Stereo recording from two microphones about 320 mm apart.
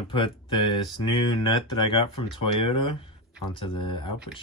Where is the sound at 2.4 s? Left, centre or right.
Left.